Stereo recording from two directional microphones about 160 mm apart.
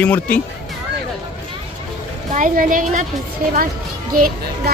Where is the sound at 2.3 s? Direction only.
55° right (ahead or behind).